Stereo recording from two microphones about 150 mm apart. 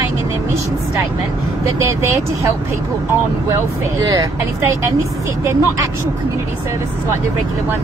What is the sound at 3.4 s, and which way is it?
Speech, 20° right (ahead or behind).